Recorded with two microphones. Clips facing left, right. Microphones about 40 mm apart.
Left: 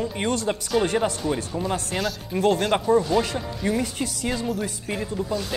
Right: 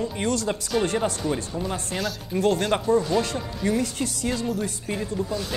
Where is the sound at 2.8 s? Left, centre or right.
Centre.